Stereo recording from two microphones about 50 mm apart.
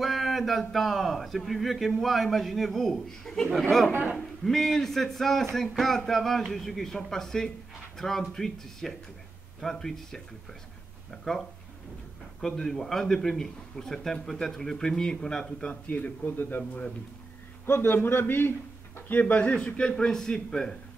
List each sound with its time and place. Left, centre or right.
0.0 s a man's voice: centre
15.7 s a man's voice: left
17.6 s a man's voice: left
19.0 s a man's voice: left; by 20.7 s centre